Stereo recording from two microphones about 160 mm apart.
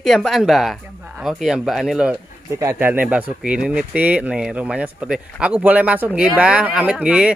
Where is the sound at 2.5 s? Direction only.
15° right (ahead or behind).